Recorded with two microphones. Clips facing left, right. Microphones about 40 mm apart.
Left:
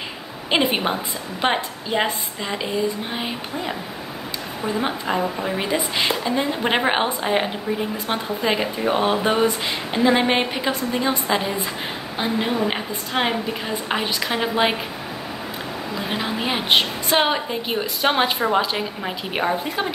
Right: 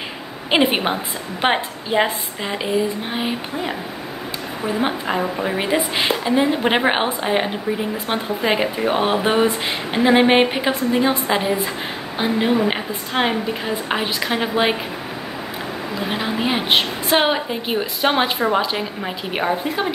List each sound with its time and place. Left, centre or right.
0.5 s speech: centre
16.0 s a woman's voice: centre